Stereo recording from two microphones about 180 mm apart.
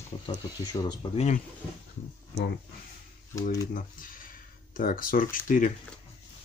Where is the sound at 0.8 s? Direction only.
35° left (ahead or behind).